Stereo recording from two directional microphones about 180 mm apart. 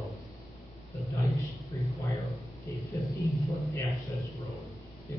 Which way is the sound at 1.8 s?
15° left (ahead or behind).